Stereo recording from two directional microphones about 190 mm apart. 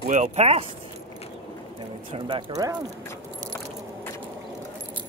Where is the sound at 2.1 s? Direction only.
30° right (ahead or behind).